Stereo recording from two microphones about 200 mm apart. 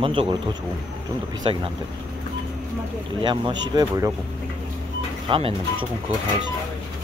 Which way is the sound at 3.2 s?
25° right (ahead or behind).